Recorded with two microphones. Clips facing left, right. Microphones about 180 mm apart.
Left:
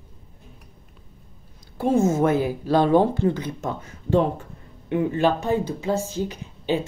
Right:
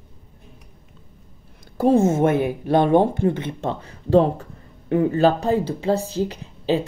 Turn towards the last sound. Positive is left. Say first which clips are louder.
# right 3 dB
turn(degrees=-35)  # may be behind; listen again after turning